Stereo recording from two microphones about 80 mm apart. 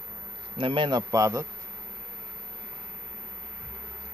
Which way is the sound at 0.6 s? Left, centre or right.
Right.